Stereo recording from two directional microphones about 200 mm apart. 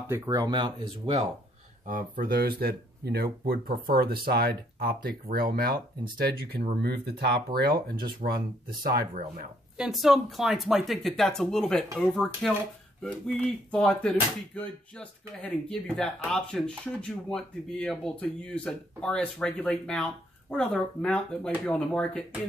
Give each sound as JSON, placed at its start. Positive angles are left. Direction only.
{"t": 0.1, "sound": "speech", "side_deg": -20}
{"t": 1.9, "sound": "speech", "side_deg": -45}
{"t": 9.8, "sound": "speech", "side_deg": 0}
{"t": 13.7, "sound": "speech", "side_deg": 5}